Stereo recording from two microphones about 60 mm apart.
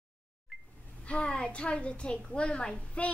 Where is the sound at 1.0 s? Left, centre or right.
Centre.